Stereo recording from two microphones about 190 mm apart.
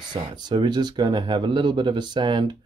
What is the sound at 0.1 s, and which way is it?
Speech, 25° right (ahead or behind).